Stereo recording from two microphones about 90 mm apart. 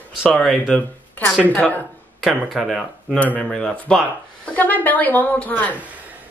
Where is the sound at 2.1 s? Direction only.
Centre (ahead or behind).